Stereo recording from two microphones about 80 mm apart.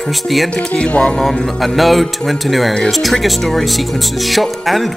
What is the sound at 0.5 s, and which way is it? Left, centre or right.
Speech, centre.